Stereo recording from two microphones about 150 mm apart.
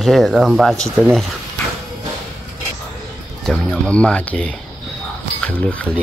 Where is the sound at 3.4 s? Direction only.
5° left (ahead or behind).